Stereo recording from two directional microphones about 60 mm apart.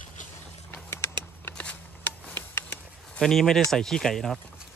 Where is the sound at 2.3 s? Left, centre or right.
Left.